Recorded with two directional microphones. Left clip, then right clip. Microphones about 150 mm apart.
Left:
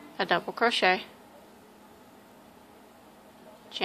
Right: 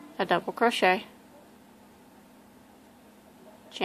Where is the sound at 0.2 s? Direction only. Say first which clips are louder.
Right 1 dB; 35° right (ahead or behind).